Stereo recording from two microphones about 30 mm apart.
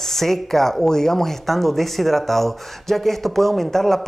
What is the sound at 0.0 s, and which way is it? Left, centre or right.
Speech, centre.